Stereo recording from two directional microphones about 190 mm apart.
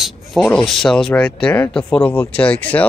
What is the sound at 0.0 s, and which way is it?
Speech, 5° left (ahead or behind).